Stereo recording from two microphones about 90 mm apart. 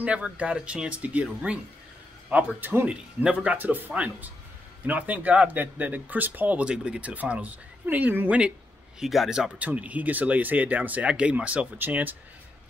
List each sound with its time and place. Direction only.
0.0 s speech: 15° right (ahead or behind)
9.0 s speech: 5° right (ahead or behind); by 12.2 s 20° right (ahead or behind)